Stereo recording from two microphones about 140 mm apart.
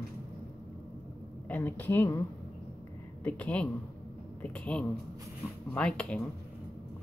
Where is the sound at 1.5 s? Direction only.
10° left (ahead or behind).